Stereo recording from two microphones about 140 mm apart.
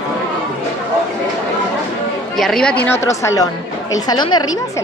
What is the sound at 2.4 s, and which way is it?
Speech, 5° left (ahead or behind).